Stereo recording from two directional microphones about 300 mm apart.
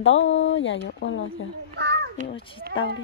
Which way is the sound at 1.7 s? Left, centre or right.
Right.